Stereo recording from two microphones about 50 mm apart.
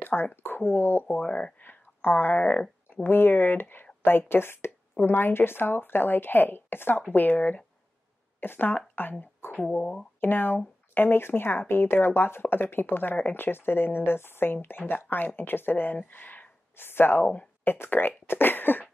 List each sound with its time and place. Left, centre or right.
0.0 s speech: left
1.2 s speech: left
1.6 s a sound: left
2.4 s speech: centre
2.9 s speech: left
7.0 s speech: left
8.4 s speech: left
9.2 s a sound: left
10.2 s speech: left
17.2 s speech: left
17.6 s speech: left